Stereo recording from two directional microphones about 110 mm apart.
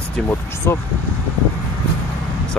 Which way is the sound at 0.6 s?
20° left (ahead or behind).